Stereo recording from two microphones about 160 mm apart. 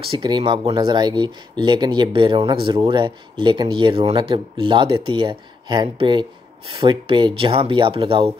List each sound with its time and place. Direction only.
0.0 s speech: 30° right (ahead or behind)
7.1 s speech: 30° right (ahead or behind)